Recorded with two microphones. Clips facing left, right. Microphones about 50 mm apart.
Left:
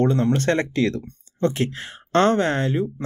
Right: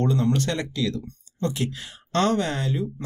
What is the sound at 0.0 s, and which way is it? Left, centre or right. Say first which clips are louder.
Speech: left 3 dB; left.